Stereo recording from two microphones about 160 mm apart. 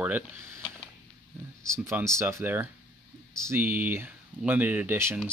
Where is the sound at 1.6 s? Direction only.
15° right (ahead or behind).